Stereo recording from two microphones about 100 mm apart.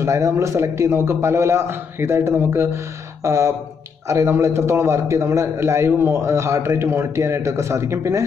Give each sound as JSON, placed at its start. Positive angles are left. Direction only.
{"t": 0.0, "sound": "a man's voice", "side_deg": -30}